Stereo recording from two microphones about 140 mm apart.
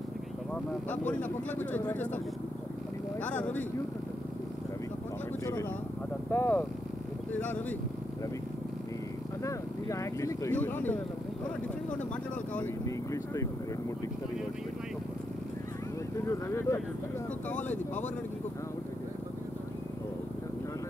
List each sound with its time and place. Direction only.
1.5 s speech: 10° left (ahead or behind)
3.2 s speech: 10° left (ahead or behind)
5.4 s speech: 20° left (ahead or behind)
9.4 s speech: 20° left (ahead or behind)
12.8 s speech: 20° left (ahead or behind)
16.3 s speech: 20° left (ahead or behind)